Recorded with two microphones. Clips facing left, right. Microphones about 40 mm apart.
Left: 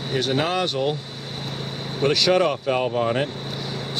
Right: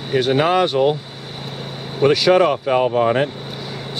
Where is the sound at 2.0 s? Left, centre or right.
Centre.